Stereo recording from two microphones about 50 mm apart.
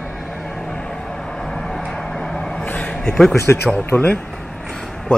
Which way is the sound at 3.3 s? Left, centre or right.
Left.